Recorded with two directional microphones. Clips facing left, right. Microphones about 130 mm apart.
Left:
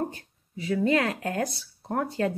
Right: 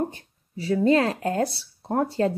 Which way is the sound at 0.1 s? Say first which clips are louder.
Right 1 dB; 35° right (ahead or behind).